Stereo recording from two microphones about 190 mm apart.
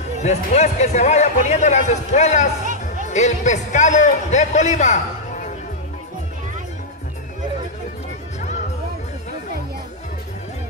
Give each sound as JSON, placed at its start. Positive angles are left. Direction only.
{"t": 0.2, "sound": "a man's voice", "side_deg": 35}
{"t": 2.6, "sound": "music", "side_deg": -40}
{"t": 3.1, "sound": "a man's voice", "side_deg": 40}
{"t": 8.4, "sound": "music", "side_deg": 40}